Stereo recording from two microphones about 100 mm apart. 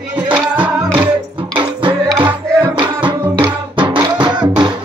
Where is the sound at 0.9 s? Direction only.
15° right (ahead or behind).